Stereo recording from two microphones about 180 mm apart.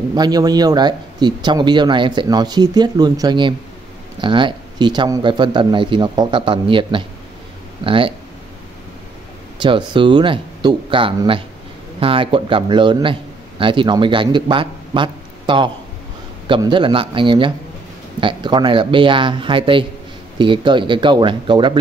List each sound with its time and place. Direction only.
0.1 s speech: 20° right (ahead or behind)
9.6 s a man's voice: 25° right (ahead or behind)